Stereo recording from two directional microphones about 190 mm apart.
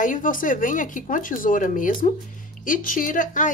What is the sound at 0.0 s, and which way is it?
Speech, 45° left (ahead or behind).